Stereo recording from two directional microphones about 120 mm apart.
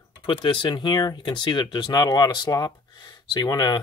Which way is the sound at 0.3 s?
45° left (ahead or behind).